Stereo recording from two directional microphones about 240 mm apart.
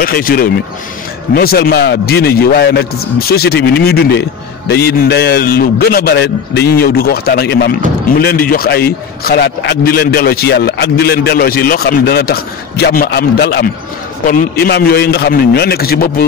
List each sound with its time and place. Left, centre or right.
0.0 s a man's voice: left